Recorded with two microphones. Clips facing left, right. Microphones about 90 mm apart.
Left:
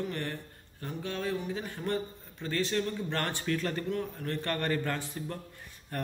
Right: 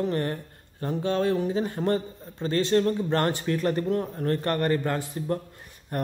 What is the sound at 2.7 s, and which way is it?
Speech, 50° right (ahead or behind).